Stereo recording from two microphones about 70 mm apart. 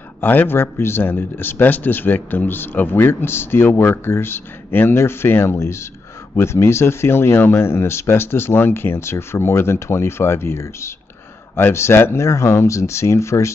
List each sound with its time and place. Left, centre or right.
0.2 s speech: left